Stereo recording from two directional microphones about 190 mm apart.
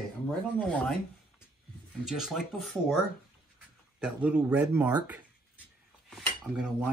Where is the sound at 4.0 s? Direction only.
5° right (ahead or behind).